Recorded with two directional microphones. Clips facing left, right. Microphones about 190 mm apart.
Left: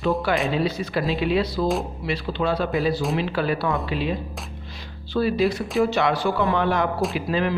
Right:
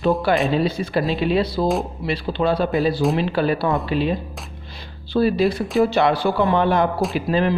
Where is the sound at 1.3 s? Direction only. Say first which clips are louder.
Right 2 dB; 30° right (ahead or behind).